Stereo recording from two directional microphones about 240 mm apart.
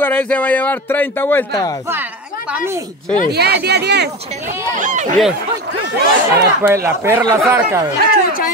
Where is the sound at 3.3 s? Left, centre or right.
Right.